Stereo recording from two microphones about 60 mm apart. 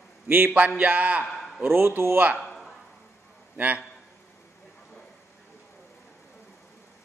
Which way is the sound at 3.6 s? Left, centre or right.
Right.